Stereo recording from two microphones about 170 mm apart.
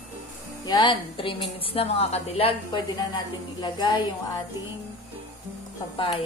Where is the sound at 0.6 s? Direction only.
25° left (ahead or behind).